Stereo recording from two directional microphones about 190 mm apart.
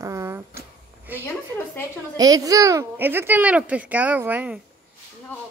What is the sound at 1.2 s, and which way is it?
Speech, 10° left (ahead or behind).